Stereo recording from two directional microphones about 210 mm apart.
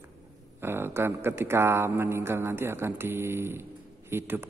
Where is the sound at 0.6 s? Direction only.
10° right (ahead or behind).